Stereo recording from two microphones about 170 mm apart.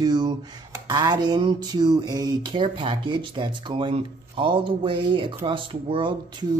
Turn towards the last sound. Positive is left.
turn(degrees=-25)  # may be behind; listen again after turning